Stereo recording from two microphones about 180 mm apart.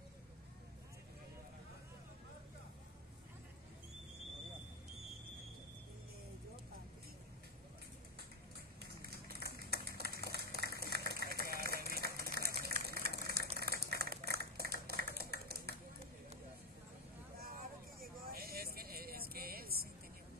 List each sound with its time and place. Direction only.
9.0 s a sound: 60° right (ahead or behind)
13.6 s typewriter: 60° right (ahead or behind)
18.3 s vehicle: 55° right (ahead or behind)